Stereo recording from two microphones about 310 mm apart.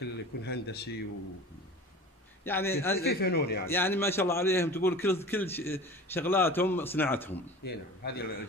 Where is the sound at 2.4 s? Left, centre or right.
Centre.